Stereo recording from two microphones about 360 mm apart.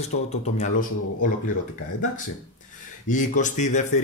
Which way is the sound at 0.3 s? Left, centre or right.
Centre.